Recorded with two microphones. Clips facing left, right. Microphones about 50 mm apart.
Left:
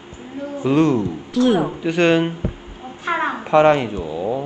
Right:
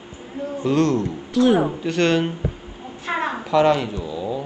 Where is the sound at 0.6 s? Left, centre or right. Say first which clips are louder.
Left 3 dB; centre.